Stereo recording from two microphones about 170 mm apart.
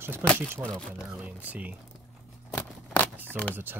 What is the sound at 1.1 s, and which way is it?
Speech, 10° right (ahead or behind).